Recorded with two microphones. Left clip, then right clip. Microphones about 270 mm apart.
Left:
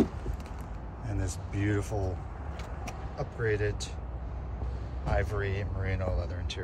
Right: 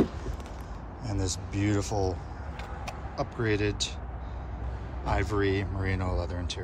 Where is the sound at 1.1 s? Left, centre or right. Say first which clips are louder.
Right 5 dB; centre.